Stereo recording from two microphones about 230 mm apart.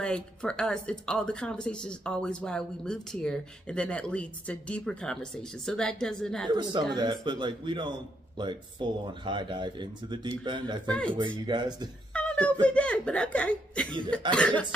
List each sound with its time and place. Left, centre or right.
0.0 s speech: centre
6.5 s speech: centre
10.9 s speech: centre
11.1 s speech: centre
12.1 s a sound: centre
12.6 s speech: centre